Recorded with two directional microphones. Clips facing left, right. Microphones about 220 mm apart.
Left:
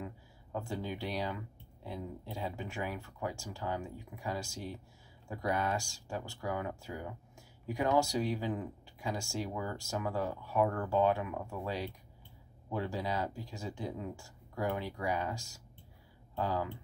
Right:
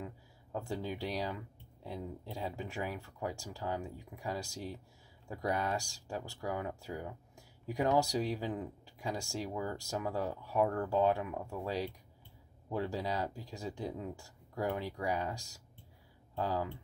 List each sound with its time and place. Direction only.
0.9 s speech: 40° right (ahead or behind)